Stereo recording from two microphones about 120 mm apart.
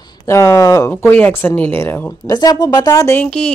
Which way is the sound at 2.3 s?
35° left (ahead or behind).